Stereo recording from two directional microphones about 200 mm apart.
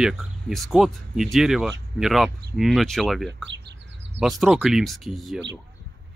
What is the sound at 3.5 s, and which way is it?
Bird, 60° right (ahead or behind).